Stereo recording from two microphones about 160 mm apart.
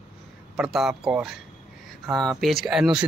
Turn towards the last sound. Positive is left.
turn(degrees=-5)  # may be behind; listen again after turning